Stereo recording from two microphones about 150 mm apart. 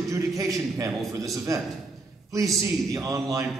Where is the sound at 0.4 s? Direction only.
20° right (ahead or behind).